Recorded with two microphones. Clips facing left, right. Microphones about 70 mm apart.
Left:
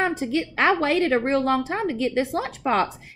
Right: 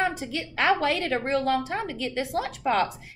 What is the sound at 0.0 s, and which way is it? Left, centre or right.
A woman's voice, left.